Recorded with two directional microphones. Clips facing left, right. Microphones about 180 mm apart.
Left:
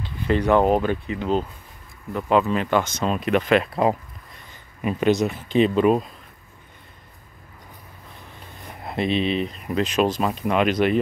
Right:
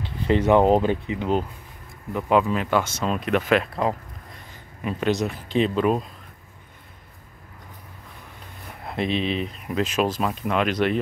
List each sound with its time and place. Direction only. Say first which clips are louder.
0.3 s speech: right 1 dB; 20° right (ahead or behind); by 3.8 s centre (ahead or behind)
4.8 s speech: left 4 dB; centre (ahead or behind)
8.8 s speech: left 2 dB; centre (ahead or behind)